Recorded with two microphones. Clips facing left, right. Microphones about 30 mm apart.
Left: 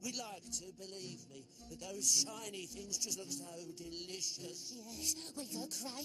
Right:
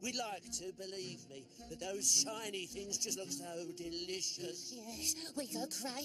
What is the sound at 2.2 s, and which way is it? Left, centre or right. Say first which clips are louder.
Speech: right 2 dB; right.